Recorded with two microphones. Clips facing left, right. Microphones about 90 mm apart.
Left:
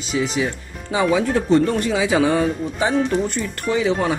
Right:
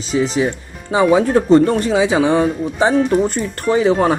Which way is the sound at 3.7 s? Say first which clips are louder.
Right 5 dB; 5° right (ahead or behind).